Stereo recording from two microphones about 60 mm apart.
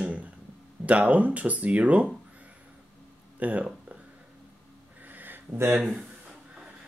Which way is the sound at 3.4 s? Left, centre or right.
Right.